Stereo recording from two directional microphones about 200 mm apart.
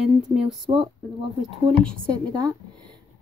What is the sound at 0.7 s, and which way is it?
A woman's voice, 30° right (ahead or behind).